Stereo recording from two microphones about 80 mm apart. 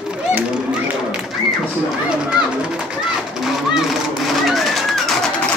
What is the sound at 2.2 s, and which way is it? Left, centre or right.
Speech, centre.